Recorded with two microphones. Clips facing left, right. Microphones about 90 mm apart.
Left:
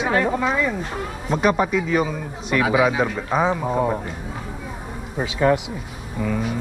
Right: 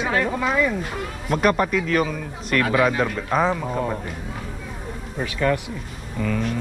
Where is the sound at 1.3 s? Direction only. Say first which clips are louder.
Even; 5° left (ahead or behind).